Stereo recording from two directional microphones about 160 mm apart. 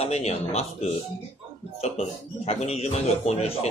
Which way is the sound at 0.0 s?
40° left (ahead or behind).